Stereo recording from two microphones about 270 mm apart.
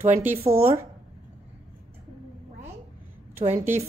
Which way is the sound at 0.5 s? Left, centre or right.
Centre.